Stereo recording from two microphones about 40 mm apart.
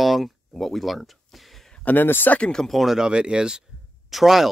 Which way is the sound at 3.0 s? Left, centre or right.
Right.